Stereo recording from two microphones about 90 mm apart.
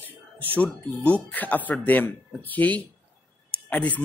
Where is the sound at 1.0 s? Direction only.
15° left (ahead or behind).